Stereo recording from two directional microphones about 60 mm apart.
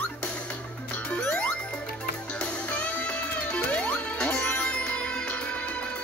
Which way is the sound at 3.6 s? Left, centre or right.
Left.